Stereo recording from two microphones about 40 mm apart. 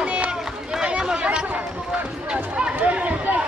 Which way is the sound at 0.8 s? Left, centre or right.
Right.